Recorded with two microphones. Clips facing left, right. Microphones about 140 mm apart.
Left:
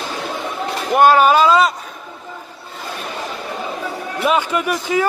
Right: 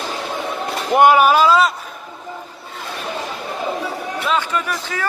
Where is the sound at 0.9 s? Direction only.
20° right (ahead or behind).